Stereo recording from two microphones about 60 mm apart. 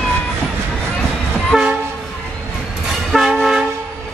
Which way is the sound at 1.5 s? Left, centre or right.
Right.